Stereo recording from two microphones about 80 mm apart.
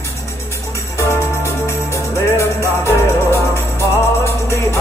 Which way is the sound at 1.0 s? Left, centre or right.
Left.